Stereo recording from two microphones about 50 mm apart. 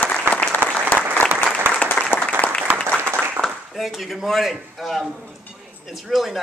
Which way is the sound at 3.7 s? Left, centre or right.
Centre.